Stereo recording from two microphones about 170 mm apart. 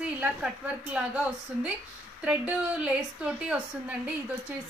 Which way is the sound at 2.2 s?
10° right (ahead or behind).